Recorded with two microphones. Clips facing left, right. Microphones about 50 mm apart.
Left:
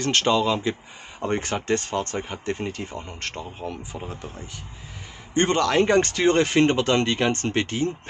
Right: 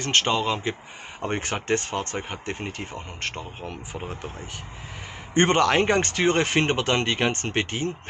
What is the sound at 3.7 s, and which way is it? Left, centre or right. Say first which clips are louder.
Speech: left 1 dB; right.